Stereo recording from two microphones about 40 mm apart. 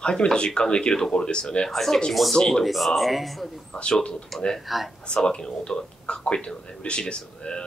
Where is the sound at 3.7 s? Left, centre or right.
Left.